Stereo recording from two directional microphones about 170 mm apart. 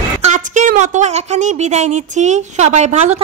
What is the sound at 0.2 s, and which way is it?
A woman's voice, 45° right (ahead or behind).